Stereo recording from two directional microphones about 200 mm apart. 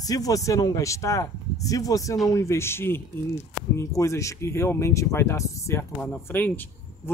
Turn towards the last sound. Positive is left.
turn(degrees=10)  # may be behind; listen again after turning